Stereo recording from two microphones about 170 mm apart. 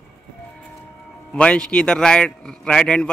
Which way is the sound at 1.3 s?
5° left (ahead or behind).